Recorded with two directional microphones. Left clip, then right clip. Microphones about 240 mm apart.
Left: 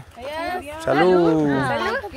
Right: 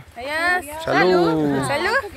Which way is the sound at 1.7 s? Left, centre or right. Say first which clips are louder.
Right 3 dB; right.